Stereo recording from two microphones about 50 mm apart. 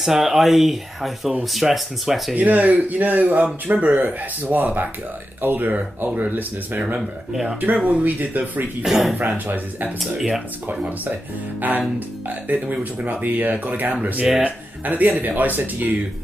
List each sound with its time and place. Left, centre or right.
0.0 s speech: centre
2.3 s speech: right
8.8 s speech: centre
10.1 s speech: centre
12.3 s speech: right